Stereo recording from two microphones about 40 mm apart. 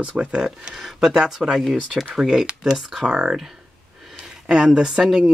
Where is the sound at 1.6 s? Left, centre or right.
Centre.